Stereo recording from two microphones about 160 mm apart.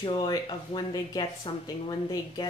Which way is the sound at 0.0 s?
30° left (ahead or behind).